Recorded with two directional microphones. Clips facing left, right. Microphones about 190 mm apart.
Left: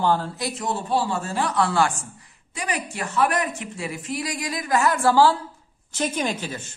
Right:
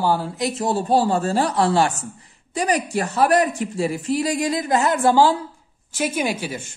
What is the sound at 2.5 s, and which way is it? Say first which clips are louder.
A woman's voice: right 8 dB; 35° right (ahead or behind).